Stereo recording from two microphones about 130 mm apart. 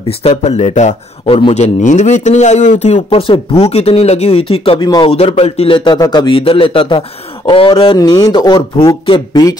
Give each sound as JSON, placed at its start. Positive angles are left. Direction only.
{"t": 0.2, "sound": "a man's voice", "side_deg": 55}